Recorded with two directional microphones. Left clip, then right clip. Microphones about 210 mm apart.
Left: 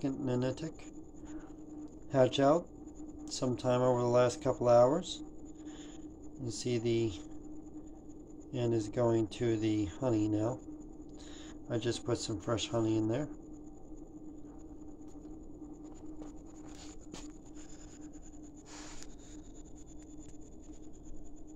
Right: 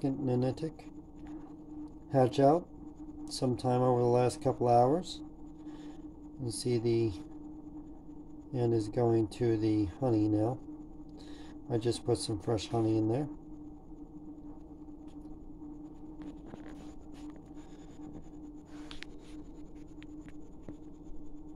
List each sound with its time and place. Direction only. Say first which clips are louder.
0.0 s speech: right 2 dB; 10° right (ahead or behind)
2.0 s speech: right 1 dB; 10° right (ahead or behind)
6.6 s speech: right 2 dB; 10° right (ahead or behind)
8.5 s speech: right 2 dB; 10° right (ahead or behind)
11.7 s speech: right 3 dB; 10° right (ahead or behind)